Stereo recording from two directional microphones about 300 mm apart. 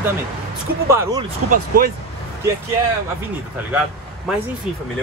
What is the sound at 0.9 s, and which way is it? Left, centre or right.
Speech, centre.